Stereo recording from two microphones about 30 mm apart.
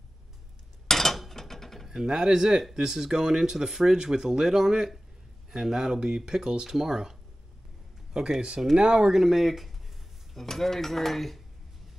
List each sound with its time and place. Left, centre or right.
0.8 s a sound: centre
1.3 s mechanisms: centre
1.9 s speech: centre
8.1 s speech: right
9.1 s speech: centre
10.3 s dishes: centre